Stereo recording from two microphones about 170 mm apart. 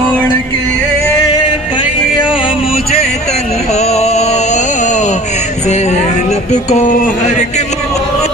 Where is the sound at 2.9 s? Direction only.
40° left (ahead or behind).